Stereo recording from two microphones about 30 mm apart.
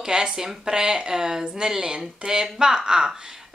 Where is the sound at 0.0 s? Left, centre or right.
Right.